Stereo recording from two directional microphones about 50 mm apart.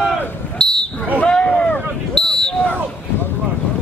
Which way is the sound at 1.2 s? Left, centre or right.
Centre.